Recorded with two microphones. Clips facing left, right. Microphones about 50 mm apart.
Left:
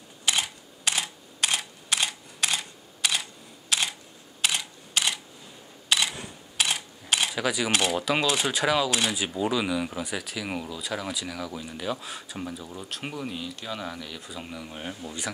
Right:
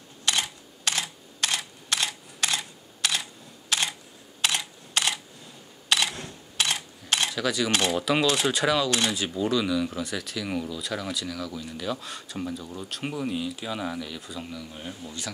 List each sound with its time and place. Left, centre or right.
0.2 s camera: centre
7.3 s speech: centre
14.4 s speech: left